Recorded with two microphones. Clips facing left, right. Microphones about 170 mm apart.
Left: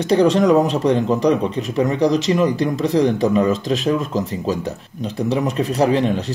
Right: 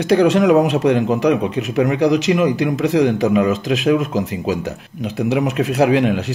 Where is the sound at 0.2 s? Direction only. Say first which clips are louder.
Even; 5° right (ahead or behind).